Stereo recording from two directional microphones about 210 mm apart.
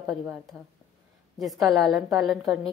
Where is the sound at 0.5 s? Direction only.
15° right (ahead or behind).